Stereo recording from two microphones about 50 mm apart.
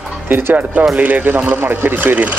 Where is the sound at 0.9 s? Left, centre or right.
Right.